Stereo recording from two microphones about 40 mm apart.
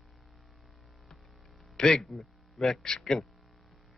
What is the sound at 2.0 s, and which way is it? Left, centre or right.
A man's voice, centre.